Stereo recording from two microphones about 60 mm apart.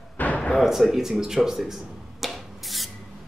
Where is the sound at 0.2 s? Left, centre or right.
Left.